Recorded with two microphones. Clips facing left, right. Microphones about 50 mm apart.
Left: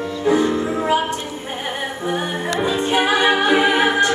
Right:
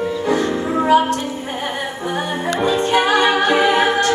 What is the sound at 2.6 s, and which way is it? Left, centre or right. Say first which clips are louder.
Music: right 3 dB; centre.